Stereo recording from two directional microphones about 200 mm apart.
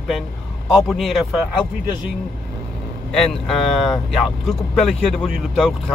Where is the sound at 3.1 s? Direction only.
Centre (ahead or behind).